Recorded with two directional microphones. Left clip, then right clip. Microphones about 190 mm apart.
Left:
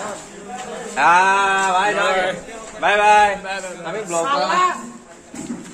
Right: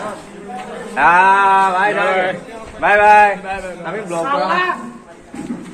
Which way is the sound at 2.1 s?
15° left (ahead or behind).